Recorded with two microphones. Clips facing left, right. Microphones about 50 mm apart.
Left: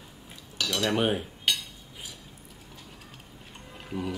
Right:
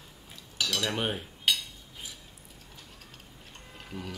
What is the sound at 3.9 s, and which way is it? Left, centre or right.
Speech, centre.